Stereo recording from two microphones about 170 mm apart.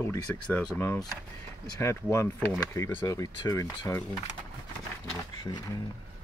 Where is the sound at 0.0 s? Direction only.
15° left (ahead or behind).